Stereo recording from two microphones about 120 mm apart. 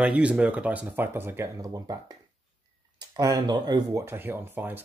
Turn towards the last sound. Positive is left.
turn(degrees=-15)  # may be behind; listen again after turning